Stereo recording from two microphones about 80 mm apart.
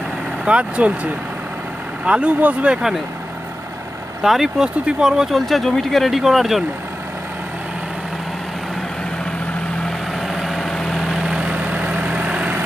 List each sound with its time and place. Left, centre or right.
0.5 s speech: centre
4.2 s speech: centre
9.8 s vehicle: centre